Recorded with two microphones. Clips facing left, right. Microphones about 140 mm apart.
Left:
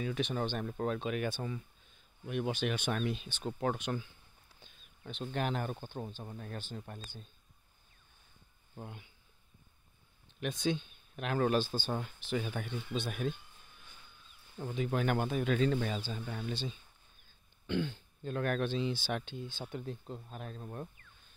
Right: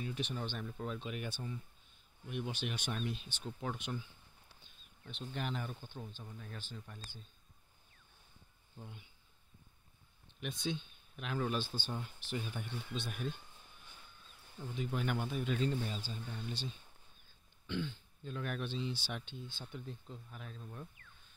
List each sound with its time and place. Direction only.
0.1 s speech: 85° left
2.6 s speech: 80° left
5.0 s speech: 65° left (ahead or behind)
8.7 s speech: 80° left
10.4 s speech: 90° left
14.6 s speech: 65° left (ahead or behind); by 16.7 s 80° left
17.6 s speech: 65° left (ahead or behind)
20.2 s speech: 45° left (ahead or behind)